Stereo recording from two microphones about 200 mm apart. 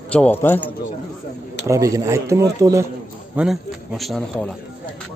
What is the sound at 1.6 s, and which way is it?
Speech, 15° right (ahead or behind).